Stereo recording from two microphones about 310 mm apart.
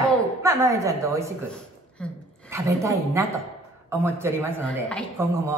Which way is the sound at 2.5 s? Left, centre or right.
Centre.